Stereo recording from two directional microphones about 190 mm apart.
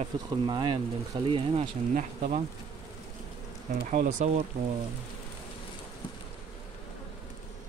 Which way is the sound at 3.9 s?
40° right (ahead or behind).